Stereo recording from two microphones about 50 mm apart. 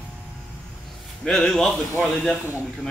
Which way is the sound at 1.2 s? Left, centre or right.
Centre.